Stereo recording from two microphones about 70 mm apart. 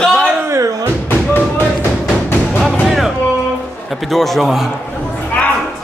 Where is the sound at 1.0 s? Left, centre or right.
Left.